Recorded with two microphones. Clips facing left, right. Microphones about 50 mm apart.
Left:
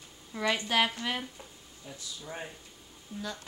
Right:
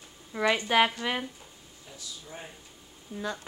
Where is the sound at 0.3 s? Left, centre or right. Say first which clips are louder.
Right 4 dB; centre.